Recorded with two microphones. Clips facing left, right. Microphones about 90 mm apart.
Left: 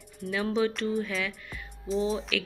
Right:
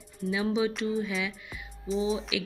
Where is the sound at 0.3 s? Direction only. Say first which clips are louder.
Even; 15° right (ahead or behind).